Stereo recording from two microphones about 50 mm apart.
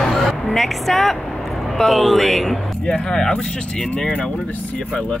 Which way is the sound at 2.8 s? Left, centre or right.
Centre.